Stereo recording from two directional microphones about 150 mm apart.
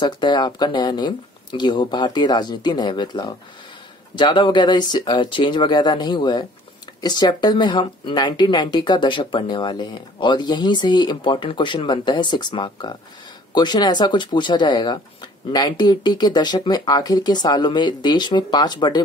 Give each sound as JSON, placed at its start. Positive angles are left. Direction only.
{"t": 0.0, "sound": "speech", "side_deg": 30}